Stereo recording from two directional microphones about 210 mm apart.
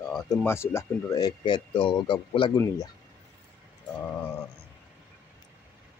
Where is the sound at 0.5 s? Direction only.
10° left (ahead or behind).